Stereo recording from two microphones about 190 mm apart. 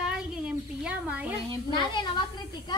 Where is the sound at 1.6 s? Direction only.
25° left (ahead or behind).